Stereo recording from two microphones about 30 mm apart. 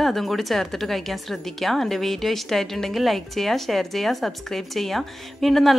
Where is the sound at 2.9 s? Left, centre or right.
Centre.